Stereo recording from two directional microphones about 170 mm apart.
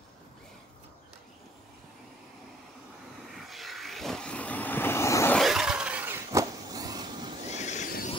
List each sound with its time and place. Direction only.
3.3 s vehicle: centre (ahead or behind); by 5.4 s 15° left (ahead or behind)
5.4 s a sound: 5° right (ahead or behind)
6.3 s vehicle: 20° right (ahead or behind)
7.5 s vehicle: 45° left (ahead or behind)